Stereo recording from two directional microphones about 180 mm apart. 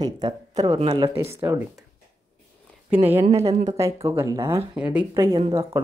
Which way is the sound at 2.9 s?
10° right (ahead or behind).